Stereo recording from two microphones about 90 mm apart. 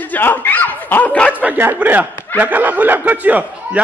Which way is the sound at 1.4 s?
25° right (ahead or behind).